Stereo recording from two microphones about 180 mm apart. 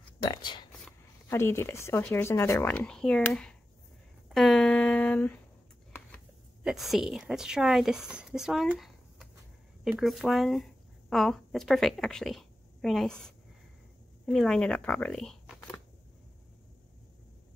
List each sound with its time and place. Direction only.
0.2 s speech: 25° left (ahead or behind)
1.3 s speech: 15° left (ahead or behind)
4.3 s a sound: centre (ahead or behind)
6.6 s a woman's voice: centre (ahead or behind)